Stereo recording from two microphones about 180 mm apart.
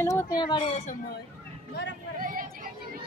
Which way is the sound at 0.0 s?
15° left (ahead or behind).